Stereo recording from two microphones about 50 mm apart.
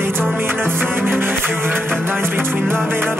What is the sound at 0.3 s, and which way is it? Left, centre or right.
Music, right.